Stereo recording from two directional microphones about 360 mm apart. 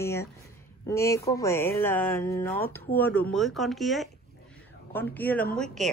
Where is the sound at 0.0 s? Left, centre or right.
Centre.